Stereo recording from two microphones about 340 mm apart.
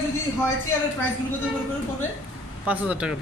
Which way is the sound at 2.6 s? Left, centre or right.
Centre.